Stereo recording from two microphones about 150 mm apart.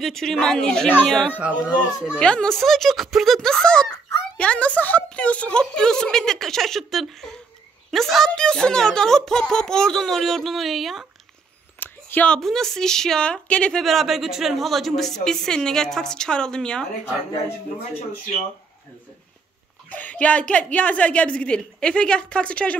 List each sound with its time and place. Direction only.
0.0 s speech: centre (ahead or behind)
11.8 s speech: 10° left (ahead or behind)
19.9 s a woman's voice: 10° left (ahead or behind)